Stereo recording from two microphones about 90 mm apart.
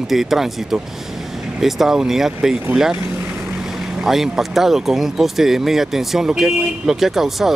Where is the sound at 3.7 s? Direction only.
5° right (ahead or behind).